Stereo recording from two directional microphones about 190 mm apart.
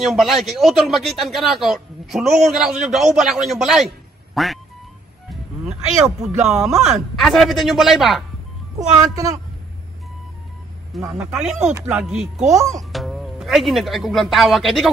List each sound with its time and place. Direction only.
0.0 s a man's voice: centre (ahead or behind)
5.3 s a sound: centre (ahead or behind)
6.4 s a man's voice: centre (ahead or behind)
9.0 s a woman's voice: 20° right (ahead or behind)
11.0 s speech: 15° right (ahead or behind)
11.3 s a man's voice: 5° right (ahead or behind)
12.4 s speech: 15° right (ahead or behind)
12.9 s speech: centre (ahead or behind)